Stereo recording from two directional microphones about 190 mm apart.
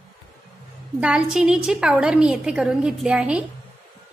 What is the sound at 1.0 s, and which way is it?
A woman's voice, 5° right (ahead or behind).